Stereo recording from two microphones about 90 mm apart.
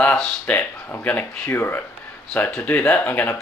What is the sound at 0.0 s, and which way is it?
Speech, 10° left (ahead or behind).